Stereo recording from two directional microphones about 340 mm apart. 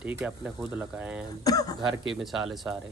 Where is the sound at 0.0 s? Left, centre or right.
Centre.